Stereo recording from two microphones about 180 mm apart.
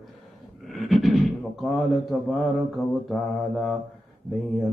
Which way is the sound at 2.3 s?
Centre (ahead or behind).